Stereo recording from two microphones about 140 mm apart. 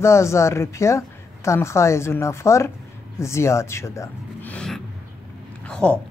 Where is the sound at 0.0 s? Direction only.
20° left (ahead or behind).